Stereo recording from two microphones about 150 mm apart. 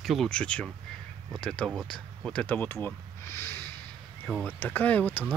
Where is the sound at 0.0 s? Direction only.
Centre (ahead or behind).